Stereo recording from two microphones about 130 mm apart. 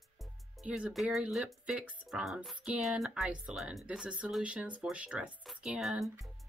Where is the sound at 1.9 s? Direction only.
5° right (ahead or behind).